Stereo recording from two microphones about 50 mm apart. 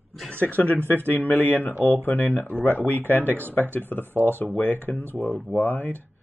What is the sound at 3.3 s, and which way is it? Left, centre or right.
Speech, right.